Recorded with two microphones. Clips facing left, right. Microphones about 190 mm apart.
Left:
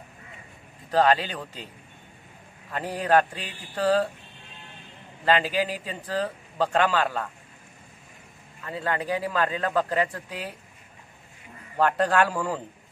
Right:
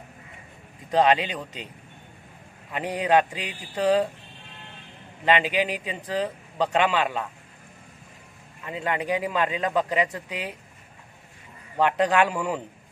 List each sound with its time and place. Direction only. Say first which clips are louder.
0.9 s speech: right 1 dB; 20° right (ahead or behind)
2.7 s speech: right 1 dB; 15° right (ahead or behind)
5.2 s speech: right 1 dB; 15° right (ahead or behind)
8.6 s speech: right 1 dB; 15° right (ahead or behind)
11.7 s speech: right 1 dB; 10° right (ahead or behind)